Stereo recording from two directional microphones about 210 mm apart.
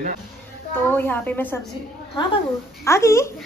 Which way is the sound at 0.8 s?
10° left (ahead or behind).